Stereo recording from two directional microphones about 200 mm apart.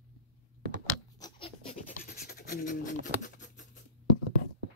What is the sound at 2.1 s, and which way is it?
Scratch, 50° left (ahead or behind).